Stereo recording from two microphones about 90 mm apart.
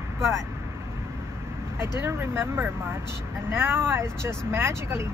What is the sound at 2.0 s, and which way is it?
Speech, 30° right (ahead or behind).